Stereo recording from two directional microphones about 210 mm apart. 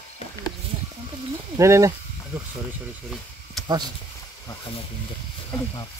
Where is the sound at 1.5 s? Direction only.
15° right (ahead or behind).